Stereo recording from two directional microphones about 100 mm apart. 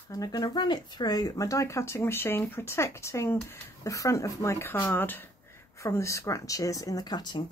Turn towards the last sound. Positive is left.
turn(degrees=45)  # may be behind; listen again after turning